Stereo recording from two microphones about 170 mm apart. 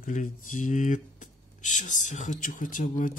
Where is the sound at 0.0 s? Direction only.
50° left (ahead or behind).